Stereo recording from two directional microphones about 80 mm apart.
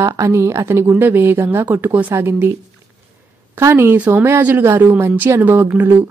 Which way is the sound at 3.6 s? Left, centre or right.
Right.